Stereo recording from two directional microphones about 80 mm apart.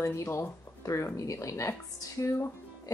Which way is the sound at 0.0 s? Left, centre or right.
Left.